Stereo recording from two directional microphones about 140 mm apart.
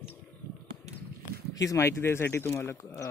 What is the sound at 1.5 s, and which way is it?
Speech, 25° left (ahead or behind).